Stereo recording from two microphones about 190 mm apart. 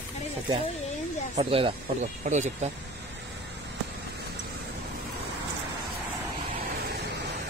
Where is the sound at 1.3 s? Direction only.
30° right (ahead or behind).